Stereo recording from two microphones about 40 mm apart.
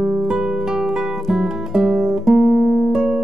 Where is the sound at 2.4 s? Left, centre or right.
Right.